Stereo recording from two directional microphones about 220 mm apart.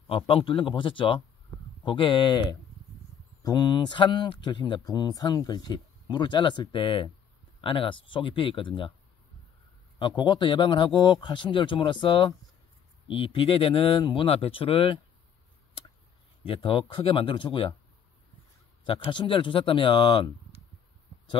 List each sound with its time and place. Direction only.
0.0 s speech: 25° left (ahead or behind)
9.9 s speech: 20° left (ahead or behind)
16.4 s speech: 25° left (ahead or behind)
18.9 s speech: 20° left (ahead or behind)